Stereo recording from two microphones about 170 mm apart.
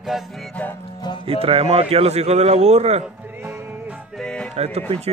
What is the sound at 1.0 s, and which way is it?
Music, 25° left (ahead or behind).